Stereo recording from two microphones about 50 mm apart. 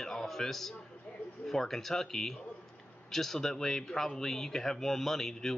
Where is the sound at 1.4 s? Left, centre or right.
Centre.